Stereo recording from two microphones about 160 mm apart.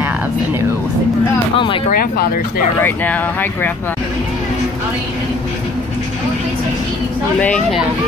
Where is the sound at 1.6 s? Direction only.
30° left (ahead or behind).